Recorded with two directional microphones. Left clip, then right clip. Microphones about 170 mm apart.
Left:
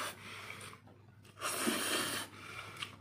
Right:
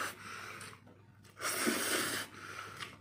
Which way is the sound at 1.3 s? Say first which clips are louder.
Right 1 dB; centre (ahead or behind).